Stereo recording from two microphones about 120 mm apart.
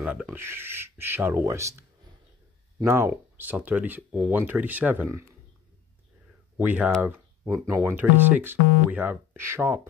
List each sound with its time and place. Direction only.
0.0 s speech: 10° right (ahead or behind)
6.6 s speech: 15° right (ahead or behind)